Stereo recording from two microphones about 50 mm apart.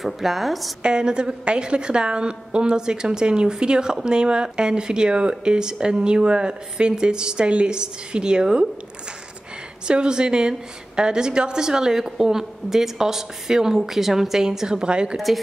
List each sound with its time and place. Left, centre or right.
0.0 s a woman's voice: centre
0.8 s a woman's voice: centre
9.8 s a woman's voice: centre
15.1 s a woman's voice: centre